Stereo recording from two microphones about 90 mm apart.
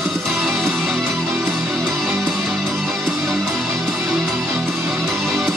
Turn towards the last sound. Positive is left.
turn(degrees=0)  # may be behind; listen again after turning